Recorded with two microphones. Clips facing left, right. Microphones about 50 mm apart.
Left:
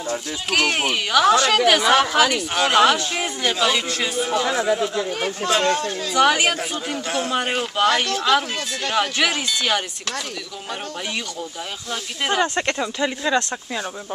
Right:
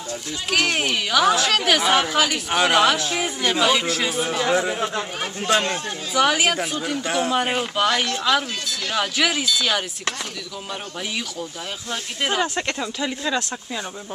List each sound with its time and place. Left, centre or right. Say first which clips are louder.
0.5 s speech: left 1 dB; centre
2.8 s speech: left 2 dB; centre
4.7 s speech: left 2 dB; right
5.5 s speech: left 1 dB; centre
6.1 s speech: left 1 dB; centre
11.9 s speech: left 1 dB; centre